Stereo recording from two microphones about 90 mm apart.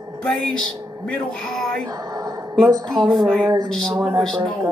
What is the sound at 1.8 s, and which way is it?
Music, 40° right (ahead or behind).